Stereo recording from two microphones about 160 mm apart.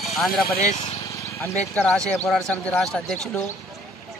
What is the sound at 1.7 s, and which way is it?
Speech, 5° left (ahead or behind).